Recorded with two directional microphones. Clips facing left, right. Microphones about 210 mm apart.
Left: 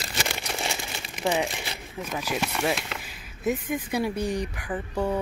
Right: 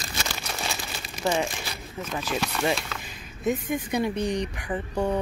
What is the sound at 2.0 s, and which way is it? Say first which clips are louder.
Speech: even; 10° left (ahead or behind).